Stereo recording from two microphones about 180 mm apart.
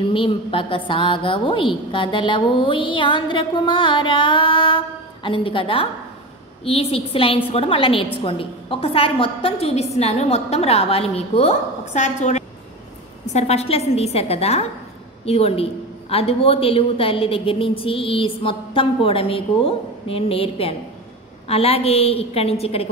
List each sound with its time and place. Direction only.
0.1 s a woman's voice: 30° left (ahead or behind)